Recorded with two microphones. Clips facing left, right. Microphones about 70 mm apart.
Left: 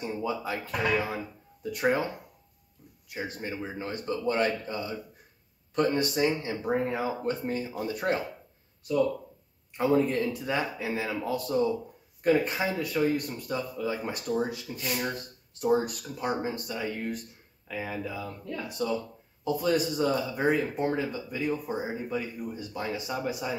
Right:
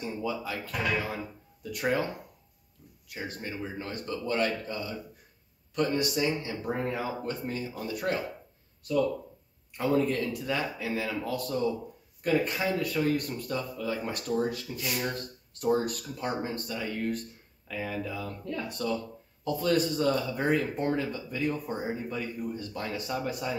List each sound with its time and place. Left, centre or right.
0.0 s speech: left
3.1 s speech: left
8.8 s speech: centre